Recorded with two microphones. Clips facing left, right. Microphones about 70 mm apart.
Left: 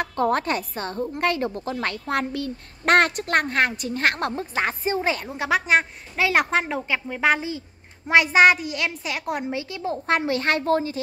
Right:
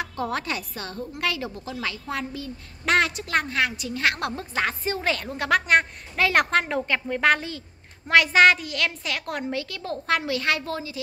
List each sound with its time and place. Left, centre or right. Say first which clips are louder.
0.0 s a woman's voice: left 6 dB; left
4.4 s a woman's voice: left 2 dB; left